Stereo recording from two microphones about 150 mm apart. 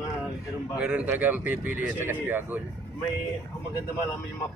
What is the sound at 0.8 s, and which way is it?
A man's voice, 5° right (ahead or behind).